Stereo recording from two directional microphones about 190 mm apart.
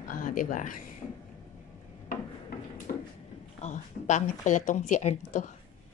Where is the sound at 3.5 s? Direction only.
40° left (ahead or behind).